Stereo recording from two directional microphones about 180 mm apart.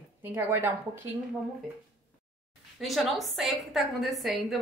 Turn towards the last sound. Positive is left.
turn(degrees=0)  # may be behind; listen again after turning